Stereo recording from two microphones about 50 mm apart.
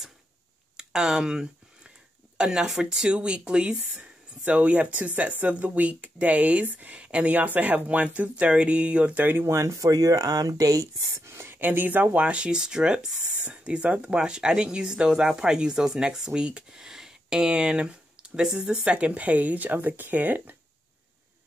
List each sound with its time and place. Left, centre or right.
0.7 s a sound: centre
2.3 s speech: centre
9.2 s speech: right
9.5 s speech: right
11.1 s speech: right
11.5 s speech: right; by 13.1 s centre
13.4 s speech: right
18.9 s speech: right